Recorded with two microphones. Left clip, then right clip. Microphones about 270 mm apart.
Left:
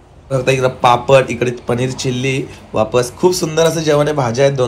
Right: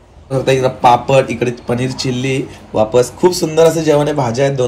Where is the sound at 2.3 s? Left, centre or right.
Centre.